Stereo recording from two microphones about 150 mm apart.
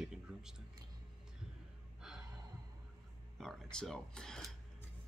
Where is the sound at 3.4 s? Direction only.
Centre (ahead or behind).